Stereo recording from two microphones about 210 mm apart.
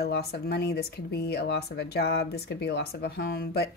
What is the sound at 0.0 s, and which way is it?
Speech, 50° left (ahead or behind).